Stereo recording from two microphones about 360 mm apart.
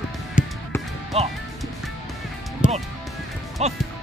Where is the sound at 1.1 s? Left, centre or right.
Centre.